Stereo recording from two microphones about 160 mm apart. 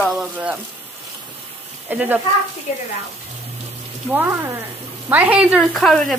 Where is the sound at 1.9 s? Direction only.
10° right (ahead or behind).